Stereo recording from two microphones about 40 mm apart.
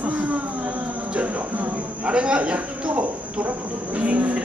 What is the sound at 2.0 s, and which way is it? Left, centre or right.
A woman's voice, right.